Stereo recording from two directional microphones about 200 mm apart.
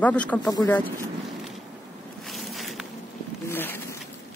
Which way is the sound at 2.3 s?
Centre (ahead or behind).